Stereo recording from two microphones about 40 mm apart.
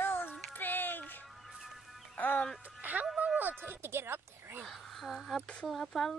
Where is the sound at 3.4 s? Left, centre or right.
Right.